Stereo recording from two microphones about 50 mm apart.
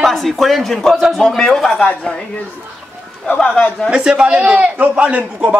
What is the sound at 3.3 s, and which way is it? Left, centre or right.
Speech, centre.